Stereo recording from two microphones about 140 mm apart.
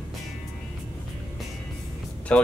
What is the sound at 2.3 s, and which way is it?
Speech, 10° left (ahead or behind).